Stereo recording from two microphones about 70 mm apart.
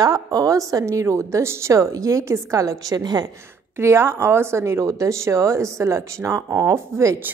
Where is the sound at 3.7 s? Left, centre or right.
Right.